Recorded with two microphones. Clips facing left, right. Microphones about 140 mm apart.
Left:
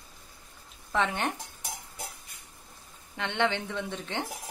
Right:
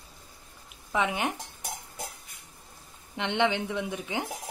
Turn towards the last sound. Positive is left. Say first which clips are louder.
# right 2 dB
turn(degrees=-5)  # may be behind; listen again after turning